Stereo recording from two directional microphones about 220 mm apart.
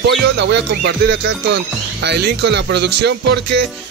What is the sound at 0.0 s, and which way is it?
Music, 50° right (ahead or behind).